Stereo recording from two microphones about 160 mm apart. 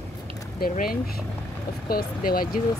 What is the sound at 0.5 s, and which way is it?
Speech, 65° left (ahead or behind).